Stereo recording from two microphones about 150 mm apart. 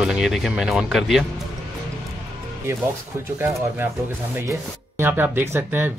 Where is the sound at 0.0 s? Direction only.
5° right (ahead or behind).